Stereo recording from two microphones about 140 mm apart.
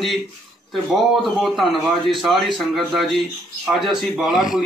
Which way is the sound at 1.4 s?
Centre (ahead or behind).